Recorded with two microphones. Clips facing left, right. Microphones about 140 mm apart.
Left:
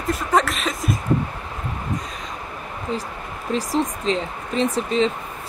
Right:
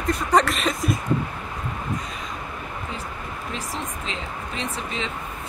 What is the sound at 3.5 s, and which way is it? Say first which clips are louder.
Speech: left 12 dB; 35° left (ahead or behind).